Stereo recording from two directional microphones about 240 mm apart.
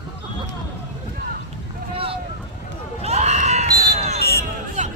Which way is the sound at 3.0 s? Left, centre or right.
Right.